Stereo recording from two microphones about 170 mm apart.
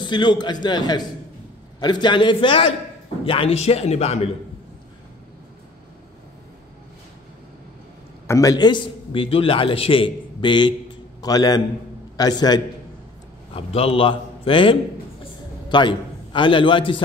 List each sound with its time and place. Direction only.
0.0 s a man's voice: 25° left (ahead or behind)
8.3 s a man's voice: 20° left (ahead or behind)